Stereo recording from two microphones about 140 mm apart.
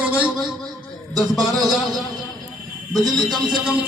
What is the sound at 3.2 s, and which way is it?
Speech, 5° right (ahead or behind).